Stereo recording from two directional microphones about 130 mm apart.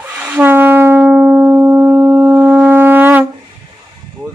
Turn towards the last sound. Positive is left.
turn(degrees=-15)  # may be behind; listen again after turning